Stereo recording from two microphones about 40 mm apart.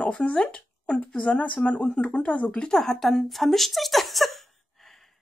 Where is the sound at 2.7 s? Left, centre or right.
Centre.